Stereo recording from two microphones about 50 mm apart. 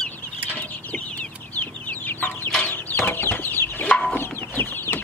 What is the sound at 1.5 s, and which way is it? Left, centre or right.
Chicken, left.